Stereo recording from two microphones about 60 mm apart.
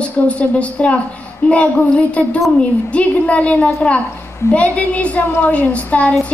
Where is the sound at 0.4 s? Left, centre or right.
Left.